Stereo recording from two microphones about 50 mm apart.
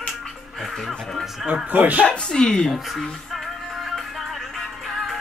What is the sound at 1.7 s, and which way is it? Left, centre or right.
Speech, right.